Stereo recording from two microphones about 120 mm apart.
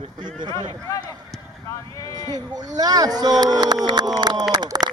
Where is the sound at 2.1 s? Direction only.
35° right (ahead or behind).